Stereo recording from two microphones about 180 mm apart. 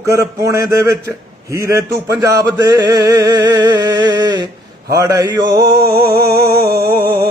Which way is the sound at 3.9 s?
15° right (ahead or behind).